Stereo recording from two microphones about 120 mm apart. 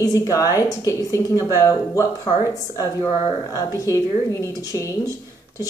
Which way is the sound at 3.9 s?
25° left (ahead or behind).